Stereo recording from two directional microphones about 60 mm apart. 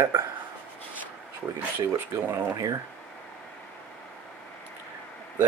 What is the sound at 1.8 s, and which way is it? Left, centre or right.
Speech, right.